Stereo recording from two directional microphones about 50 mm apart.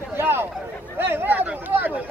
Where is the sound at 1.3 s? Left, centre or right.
Right.